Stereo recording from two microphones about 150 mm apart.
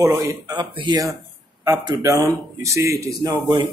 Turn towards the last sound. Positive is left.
turn(degrees=-30)  # may be behind; listen again after turning